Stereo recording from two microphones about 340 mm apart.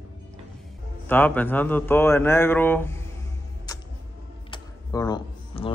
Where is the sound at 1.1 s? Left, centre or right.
Centre.